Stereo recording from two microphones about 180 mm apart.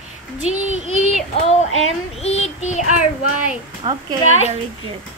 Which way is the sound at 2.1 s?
35° left (ahead or behind).